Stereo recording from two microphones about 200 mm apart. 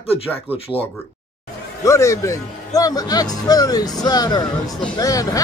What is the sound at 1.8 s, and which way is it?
Speech, 15° left (ahead or behind).